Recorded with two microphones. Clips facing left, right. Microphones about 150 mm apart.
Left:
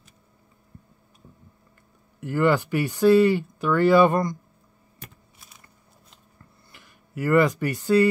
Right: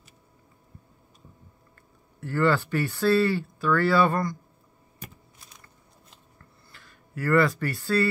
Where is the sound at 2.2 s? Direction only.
15° left (ahead or behind).